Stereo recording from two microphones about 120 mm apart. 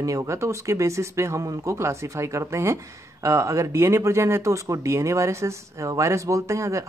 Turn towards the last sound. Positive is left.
turn(degrees=-25)  # may be behind; listen again after turning